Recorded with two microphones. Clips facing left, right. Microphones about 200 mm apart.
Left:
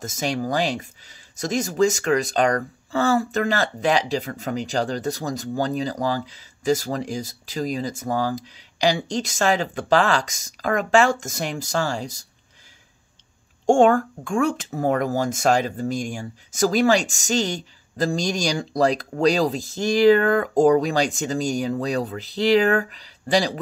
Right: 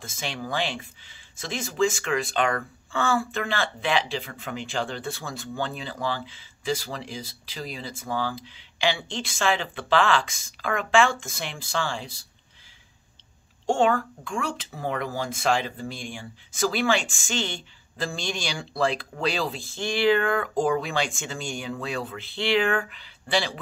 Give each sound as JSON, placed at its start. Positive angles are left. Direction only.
{"t": 0.0, "sound": "speech", "side_deg": 45}
{"t": 13.7, "sound": "speech", "side_deg": 50}